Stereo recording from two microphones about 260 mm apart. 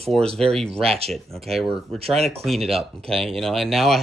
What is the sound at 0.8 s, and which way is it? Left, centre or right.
Speech, right.